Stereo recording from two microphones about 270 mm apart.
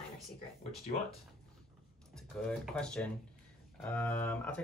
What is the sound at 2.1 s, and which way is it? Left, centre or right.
Speech, centre.